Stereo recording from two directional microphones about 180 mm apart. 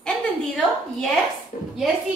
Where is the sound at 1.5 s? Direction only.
45° left (ahead or behind).